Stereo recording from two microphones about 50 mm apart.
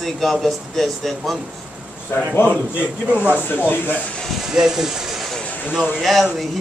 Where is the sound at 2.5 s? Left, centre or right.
Right.